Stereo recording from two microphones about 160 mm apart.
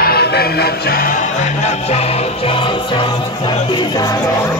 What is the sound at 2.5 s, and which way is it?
Music, 35° left (ahead or behind).